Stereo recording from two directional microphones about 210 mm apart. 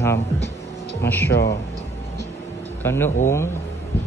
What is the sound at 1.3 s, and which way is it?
Speech, 50° left (ahead or behind).